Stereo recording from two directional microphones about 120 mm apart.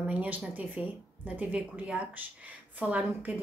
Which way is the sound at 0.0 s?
10° right (ahead or behind).